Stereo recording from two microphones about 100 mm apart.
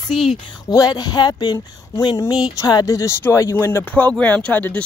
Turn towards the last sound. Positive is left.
turn(degrees=15)  # may be behind; listen again after turning